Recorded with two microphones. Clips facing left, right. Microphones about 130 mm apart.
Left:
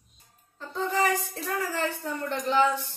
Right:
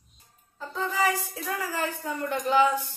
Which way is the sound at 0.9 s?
Centre (ahead or behind).